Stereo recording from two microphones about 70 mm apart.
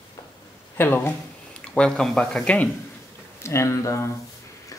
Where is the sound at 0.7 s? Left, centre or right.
Left.